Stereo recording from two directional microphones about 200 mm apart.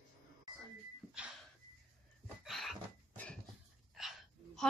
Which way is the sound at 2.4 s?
Centre (ahead or behind).